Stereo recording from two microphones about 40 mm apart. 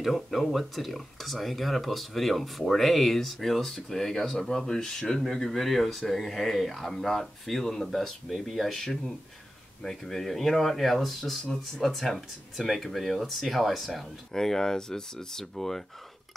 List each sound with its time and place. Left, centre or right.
0.0 s speech: centre
14.3 s speech: centre